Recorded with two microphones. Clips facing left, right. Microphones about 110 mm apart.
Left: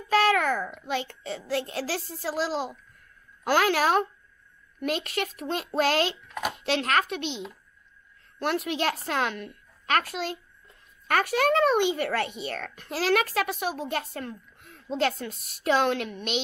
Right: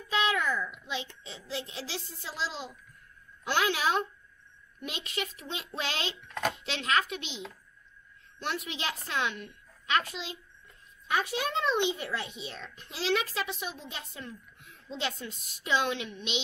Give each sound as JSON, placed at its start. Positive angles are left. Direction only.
{"t": 0.1, "sound": "babbling", "side_deg": 55}
{"t": 0.8, "sound": "speech", "side_deg": 55}
{"t": 6.2, "sound": "speech", "side_deg": 10}
{"t": 6.5, "sound": "speech", "side_deg": 50}
{"t": 8.4, "sound": "a child's voice", "side_deg": 50}
{"t": 14.1, "sound": "a sound", "side_deg": 55}
{"t": 14.9, "sound": "speech", "side_deg": 55}